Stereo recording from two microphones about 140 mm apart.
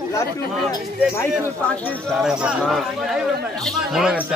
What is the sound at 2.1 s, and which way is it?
A man's voice, 5° right (ahead or behind).